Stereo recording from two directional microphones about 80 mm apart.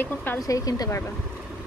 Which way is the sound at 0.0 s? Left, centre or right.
Left.